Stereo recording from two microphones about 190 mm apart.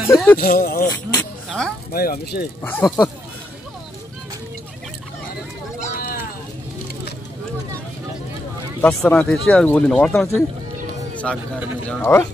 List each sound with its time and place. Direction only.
0.1 s speech: 10° left (ahead or behind)
0.4 s speech: 50° left (ahead or behind)
0.9 s music: 5° left (ahead or behind)
1.9 s speech: 50° left (ahead or behind)
2.6 s speech: 10° left (ahead or behind)
5.8 s a sound: 50° left (ahead or behind)
8.8 s speech: 10° left (ahead or behind)
11.3 s speech: 5° left (ahead or behind)